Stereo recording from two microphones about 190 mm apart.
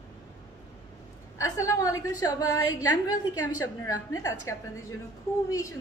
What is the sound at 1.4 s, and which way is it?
A woman's voice, 15° left (ahead or behind).